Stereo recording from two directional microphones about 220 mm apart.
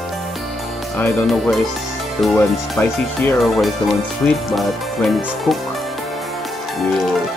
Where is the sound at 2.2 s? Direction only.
5° left (ahead or behind).